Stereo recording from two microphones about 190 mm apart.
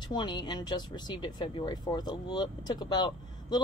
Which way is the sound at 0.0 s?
25° left (ahead or behind).